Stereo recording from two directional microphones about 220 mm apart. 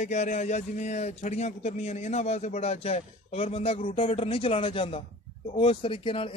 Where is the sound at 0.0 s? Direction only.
30° left (ahead or behind).